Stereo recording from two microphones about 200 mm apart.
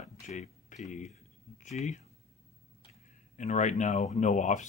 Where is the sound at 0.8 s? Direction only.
35° left (ahead or behind).